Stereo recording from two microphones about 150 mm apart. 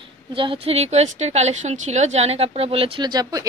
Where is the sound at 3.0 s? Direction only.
25° right (ahead or behind).